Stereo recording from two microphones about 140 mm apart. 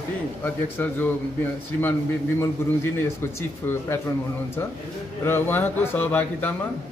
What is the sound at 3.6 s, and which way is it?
Speech, 15° left (ahead or behind).